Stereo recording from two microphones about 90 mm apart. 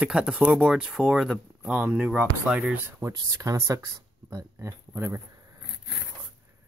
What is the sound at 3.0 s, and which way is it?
Speech, 40° right (ahead or behind).